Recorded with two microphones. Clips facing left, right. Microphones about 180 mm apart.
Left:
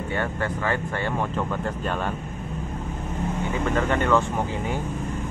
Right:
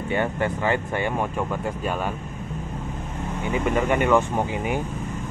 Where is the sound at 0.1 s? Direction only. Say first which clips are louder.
Right 4 dB; 20° right (ahead or behind).